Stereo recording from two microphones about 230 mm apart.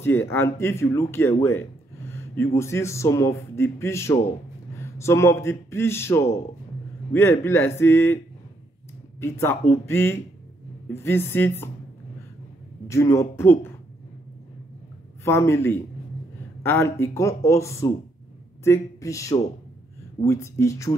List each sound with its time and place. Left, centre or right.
0.0 s speech: centre
9.2 s speech: centre
12.8 s speech: centre
15.2 s speech: centre